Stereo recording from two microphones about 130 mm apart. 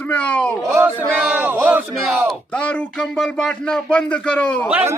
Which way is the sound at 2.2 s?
10° left (ahead or behind).